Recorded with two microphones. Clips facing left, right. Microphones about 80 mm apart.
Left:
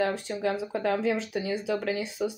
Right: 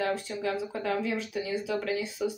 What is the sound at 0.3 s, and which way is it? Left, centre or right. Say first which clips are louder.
Speech: left 3 dB; left.